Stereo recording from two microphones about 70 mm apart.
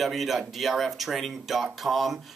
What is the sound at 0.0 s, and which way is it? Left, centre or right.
Speech, centre.